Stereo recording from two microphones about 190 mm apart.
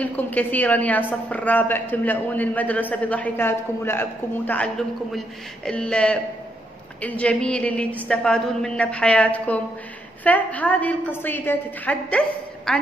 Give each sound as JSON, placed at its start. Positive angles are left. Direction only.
{"t": 0.0, "sound": "a woman's voice", "side_deg": 10}